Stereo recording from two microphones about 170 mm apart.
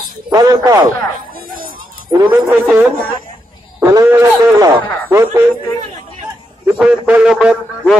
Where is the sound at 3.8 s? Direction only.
20° right (ahead or behind).